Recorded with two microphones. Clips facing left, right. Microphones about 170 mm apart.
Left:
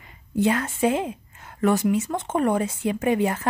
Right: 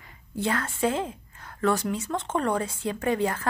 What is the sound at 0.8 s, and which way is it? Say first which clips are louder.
A woman's voice: left 4 dB; 15° left (ahead or behind).